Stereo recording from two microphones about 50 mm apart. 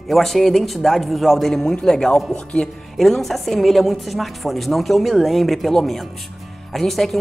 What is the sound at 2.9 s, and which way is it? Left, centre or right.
A woman's voice, centre.